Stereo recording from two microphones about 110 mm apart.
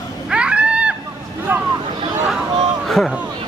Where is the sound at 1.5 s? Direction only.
20° right (ahead or behind).